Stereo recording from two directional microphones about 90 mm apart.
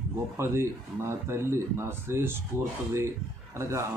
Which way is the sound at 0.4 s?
30° right (ahead or behind).